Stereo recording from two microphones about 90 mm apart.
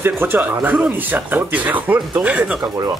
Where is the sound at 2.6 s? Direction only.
35° right (ahead or behind).